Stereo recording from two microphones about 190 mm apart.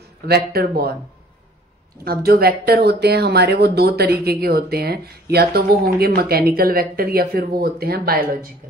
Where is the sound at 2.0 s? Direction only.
55° right (ahead or behind).